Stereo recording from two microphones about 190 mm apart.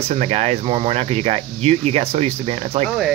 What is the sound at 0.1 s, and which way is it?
Speech, 35° right (ahead or behind).